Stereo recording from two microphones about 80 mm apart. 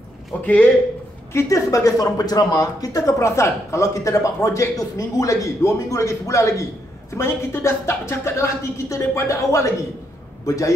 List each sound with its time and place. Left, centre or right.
0.4 s speech: centre
1.3 s a man's voice: left